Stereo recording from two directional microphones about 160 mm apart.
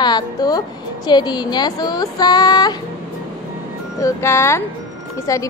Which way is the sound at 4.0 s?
15° left (ahead or behind).